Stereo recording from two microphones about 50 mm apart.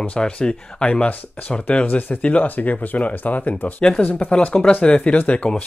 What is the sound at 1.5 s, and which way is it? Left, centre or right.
Speech, left.